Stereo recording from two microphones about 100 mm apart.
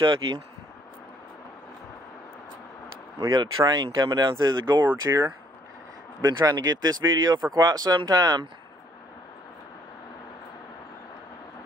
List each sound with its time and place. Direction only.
0.0 s speech: 50° right (ahead or behind)
3.3 s speech: 45° right (ahead or behind)
5.1 s speech: 25° right (ahead or behind)
6.2 s speech: 45° right (ahead or behind)